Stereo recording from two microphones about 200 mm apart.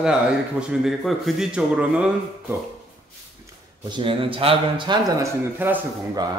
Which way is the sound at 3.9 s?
25° right (ahead or behind).